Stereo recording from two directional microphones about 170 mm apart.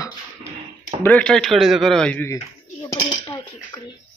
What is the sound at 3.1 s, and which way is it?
Dishes, 25° left (ahead or behind).